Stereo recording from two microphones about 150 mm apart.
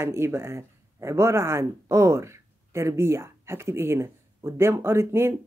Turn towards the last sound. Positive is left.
turn(degrees=-15)  # may be behind; listen again after turning